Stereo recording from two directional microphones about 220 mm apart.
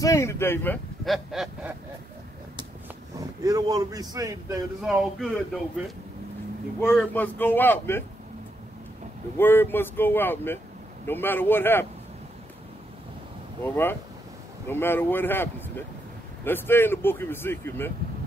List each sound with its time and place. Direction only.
0.0 s speech: 15° left (ahead or behind)
1.0 s a sound: centre (ahead or behind)
3.2 s speech: 15° right (ahead or behind)
4.8 s a sound: centre (ahead or behind)
6.8 s speech: 5° left (ahead or behind)
9.4 s speech: 10° left (ahead or behind)
13.7 s speech: 10° left (ahead or behind)